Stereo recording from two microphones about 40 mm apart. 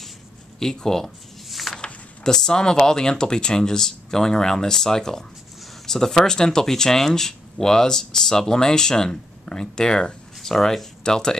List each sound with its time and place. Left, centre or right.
0.6 s speech: centre
1.5 s a sound: centre
2.2 s speech: centre